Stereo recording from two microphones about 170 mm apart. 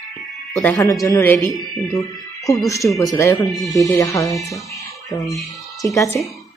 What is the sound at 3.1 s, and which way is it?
Speech, 20° left (ahead or behind).